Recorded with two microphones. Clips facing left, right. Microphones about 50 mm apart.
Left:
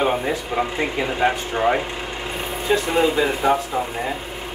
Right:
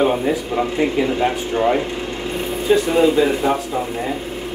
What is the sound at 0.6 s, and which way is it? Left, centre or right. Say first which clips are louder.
Speech: right 4 dB; centre.